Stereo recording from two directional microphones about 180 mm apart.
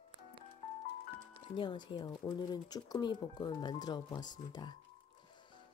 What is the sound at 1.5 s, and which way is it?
Speech, 25° left (ahead or behind).